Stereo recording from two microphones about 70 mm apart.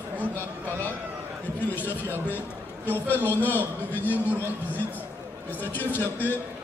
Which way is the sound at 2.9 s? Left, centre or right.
Left.